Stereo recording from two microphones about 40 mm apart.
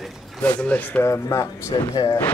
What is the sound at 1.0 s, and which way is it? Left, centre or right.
Speech, left.